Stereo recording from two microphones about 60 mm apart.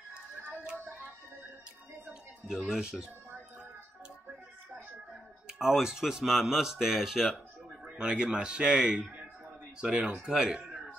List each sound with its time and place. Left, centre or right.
2.7 s speech: centre
5.5 s speech: centre
7.8 s speech: centre